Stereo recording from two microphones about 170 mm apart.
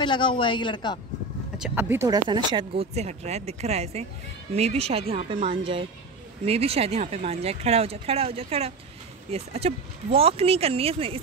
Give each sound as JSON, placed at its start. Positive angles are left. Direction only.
{"t": 0.0, "sound": "speech", "side_deg": 30}
{"t": 1.6, "sound": "speech", "side_deg": -15}